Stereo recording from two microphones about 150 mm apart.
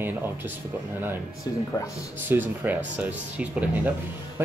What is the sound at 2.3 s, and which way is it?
Speech, 15° right (ahead or behind).